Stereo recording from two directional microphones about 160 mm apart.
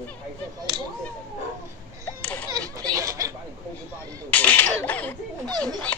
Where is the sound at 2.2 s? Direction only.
10° left (ahead or behind).